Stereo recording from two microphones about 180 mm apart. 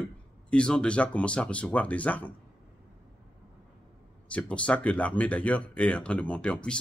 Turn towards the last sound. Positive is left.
turn(degrees=5)  # may be behind; listen again after turning